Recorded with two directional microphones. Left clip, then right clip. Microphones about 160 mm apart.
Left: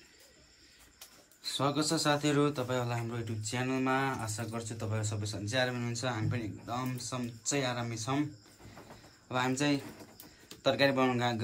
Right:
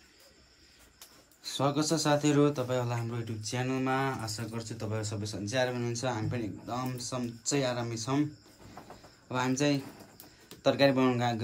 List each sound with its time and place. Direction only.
1.4 s a man's voice: 10° right (ahead or behind)
9.3 s speech: 5° right (ahead or behind)